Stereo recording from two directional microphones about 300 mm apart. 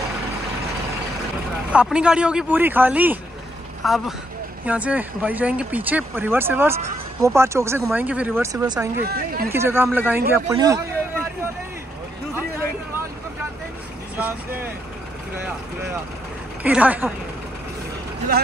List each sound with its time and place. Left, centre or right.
1.7 s speech: centre
9.0 s speech: right
9.5 s a man's voice: centre
16.6 s speech: centre